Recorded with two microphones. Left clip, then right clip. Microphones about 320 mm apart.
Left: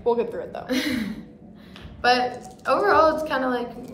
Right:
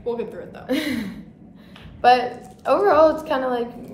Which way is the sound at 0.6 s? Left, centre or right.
Centre.